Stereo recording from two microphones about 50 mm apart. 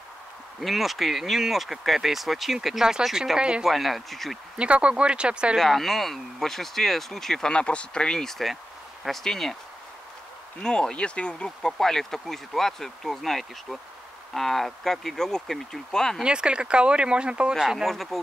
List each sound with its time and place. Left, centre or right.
0.6 s speech: centre
3.3 s speech: centre
3.6 s speech: centre
4.6 s speech: right
5.6 s speech: centre
7.4 s speech: left
10.6 s speech: centre
16.3 s speech: centre
17.6 s speech: centre
17.8 s speech: centre